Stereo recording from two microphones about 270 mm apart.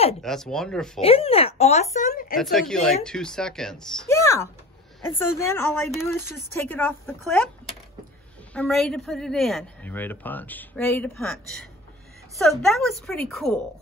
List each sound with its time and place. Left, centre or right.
0.2 s speech: centre
1.0 s speech: left
2.3 s a woman's voice: centre
6.1 s speech: centre
8.5 s speech: centre
12.4 s speech: centre